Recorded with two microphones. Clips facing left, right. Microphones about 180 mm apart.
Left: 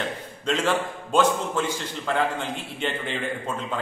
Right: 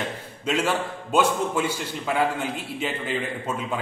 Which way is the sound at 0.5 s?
10° right (ahead or behind).